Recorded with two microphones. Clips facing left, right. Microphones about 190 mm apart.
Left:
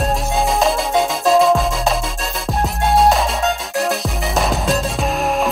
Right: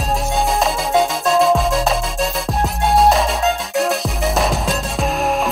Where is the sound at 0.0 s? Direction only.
Centre (ahead or behind).